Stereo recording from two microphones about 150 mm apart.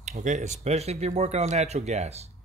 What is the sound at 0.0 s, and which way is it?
Speech, 55° right (ahead or behind).